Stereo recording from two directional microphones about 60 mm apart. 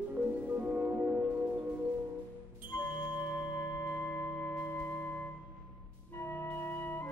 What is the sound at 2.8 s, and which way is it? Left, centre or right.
Music, left.